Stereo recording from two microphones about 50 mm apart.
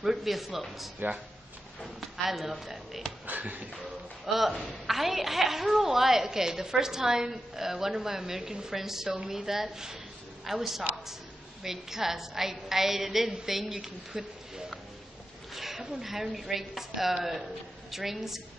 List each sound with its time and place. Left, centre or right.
0.0 s a woman's voice: centre
3.3 s a sound: right
4.4 s a woman's voice: centre